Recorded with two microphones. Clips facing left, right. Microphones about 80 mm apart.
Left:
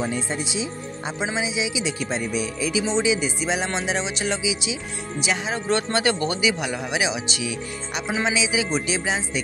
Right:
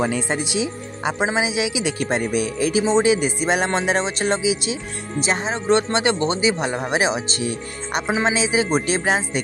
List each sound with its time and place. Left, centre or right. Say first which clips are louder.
0.0 s speech: right 4 dB; right
5.2 s speech: right 3 dB; right
5.5 s speech: right 5 dB; right